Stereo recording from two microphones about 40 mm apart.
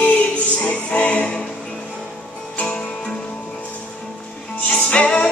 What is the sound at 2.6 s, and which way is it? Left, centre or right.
Music, left.